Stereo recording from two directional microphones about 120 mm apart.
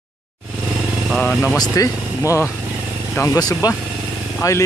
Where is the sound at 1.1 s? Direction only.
15° left (ahead or behind).